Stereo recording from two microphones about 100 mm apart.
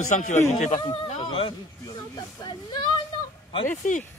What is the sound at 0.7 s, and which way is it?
Speech, 55° left (ahead or behind).